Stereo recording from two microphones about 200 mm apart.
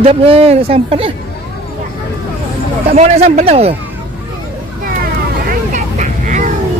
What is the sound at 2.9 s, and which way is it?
Speech, 35° right (ahead or behind).